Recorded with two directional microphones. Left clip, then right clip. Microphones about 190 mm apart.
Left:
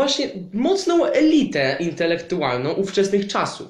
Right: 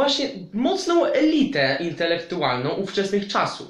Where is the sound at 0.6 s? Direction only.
45° left (ahead or behind).